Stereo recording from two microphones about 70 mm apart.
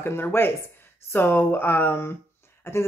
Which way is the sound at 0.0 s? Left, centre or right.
Left.